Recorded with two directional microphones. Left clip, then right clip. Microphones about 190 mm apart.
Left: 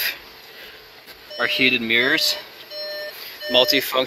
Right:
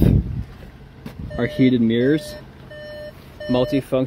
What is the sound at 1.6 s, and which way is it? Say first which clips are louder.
Speech: even; 70° left (ahead or behind).